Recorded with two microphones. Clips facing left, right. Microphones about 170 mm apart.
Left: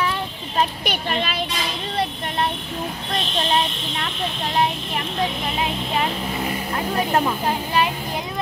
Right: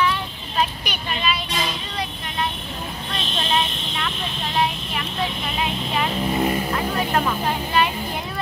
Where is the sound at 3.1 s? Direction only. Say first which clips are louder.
Left 2 dB; 40° left (ahead or behind).